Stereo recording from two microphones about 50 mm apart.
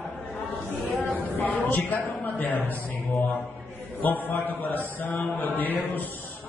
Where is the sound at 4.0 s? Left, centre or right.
Left.